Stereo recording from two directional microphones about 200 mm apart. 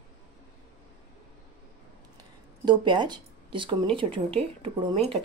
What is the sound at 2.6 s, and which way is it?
Speech, 20° right (ahead or behind).